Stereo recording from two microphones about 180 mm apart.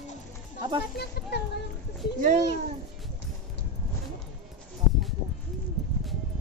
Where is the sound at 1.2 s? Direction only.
65° left (ahead or behind).